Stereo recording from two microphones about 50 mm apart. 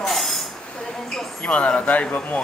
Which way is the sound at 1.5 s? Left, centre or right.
Left.